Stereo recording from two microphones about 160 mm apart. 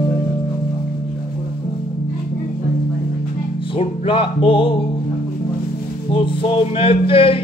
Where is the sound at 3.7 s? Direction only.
35° left (ahead or behind).